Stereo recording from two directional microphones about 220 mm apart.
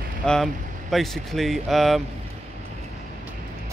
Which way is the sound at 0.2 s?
Centre (ahead or behind).